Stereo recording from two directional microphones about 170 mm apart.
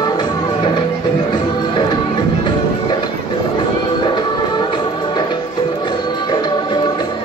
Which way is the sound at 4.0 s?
25° left (ahead or behind).